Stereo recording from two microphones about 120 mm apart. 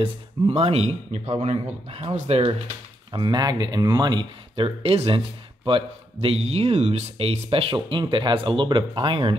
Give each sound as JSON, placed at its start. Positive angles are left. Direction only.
{"t": 0.0, "sound": "speech", "side_deg": -55}
{"t": 3.1, "sound": "speech", "side_deg": -40}